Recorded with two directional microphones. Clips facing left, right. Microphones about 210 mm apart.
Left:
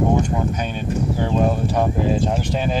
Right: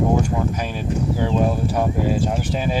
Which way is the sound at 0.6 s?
5° right (ahead or behind).